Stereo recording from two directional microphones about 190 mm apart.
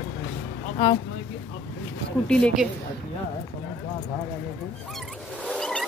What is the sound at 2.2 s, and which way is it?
Speech, centre (ahead or behind).